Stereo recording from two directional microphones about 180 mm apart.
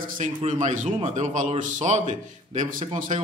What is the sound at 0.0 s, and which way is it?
A man's voice, 50° right (ahead or behind).